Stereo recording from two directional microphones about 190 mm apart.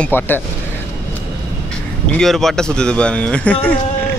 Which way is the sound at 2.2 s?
Centre (ahead or behind).